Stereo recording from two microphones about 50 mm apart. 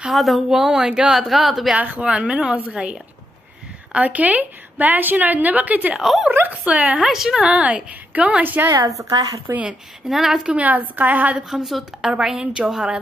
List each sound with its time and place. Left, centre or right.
0.1 s a woman's voice: centre
1.1 s speech: centre
2.0 s a woman's voice: right
5.9 s speech: centre
6.5 s a woman's voice: right
7.0 s a woman's voice: centre
7.4 s a woman's voice: right
8.6 s a woman's voice: right
10.0 s a woman's voice: centre
10.5 s a woman's voice: right
11.4 s a woman's voice: centre